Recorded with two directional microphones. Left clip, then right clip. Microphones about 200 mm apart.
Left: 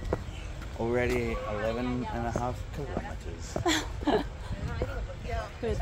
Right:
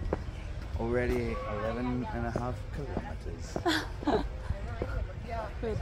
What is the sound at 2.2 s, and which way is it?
Speech, 10° left (ahead or behind).